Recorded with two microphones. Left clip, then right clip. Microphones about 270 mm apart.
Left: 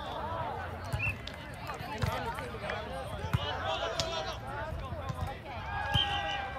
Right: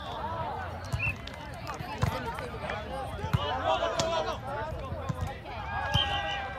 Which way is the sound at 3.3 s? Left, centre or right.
Right.